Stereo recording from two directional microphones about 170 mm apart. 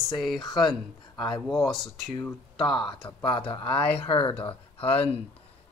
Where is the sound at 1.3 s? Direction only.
Centre (ahead or behind).